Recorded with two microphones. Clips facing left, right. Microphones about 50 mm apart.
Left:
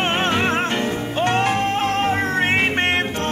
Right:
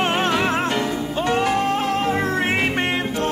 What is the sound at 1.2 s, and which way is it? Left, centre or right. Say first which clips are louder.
Music: even; left.